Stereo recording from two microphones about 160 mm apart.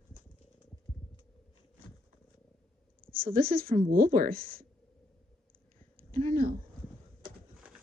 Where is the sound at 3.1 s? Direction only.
65° right (ahead or behind).